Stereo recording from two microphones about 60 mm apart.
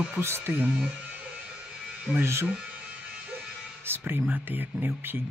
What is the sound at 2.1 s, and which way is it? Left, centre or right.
Speech, right.